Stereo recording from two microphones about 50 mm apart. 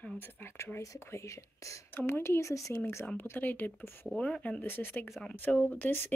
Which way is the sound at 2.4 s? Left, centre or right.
Left.